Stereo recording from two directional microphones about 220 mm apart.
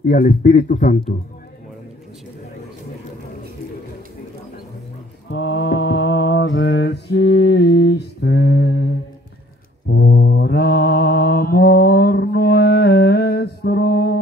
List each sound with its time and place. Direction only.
0.0 s speech: 40° left (ahead or behind)
5.3 s mantra: 60° left (ahead or behind)
9.8 s mantra: 55° left (ahead or behind)